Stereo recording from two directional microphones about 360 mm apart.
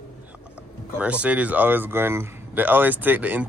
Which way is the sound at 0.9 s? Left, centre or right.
Centre.